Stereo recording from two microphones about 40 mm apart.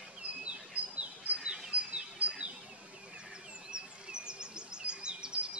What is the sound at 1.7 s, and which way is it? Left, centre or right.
Bird, right.